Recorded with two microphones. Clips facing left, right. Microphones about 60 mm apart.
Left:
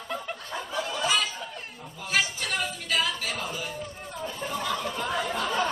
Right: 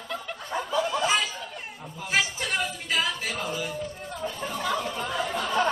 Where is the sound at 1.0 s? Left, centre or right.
Right.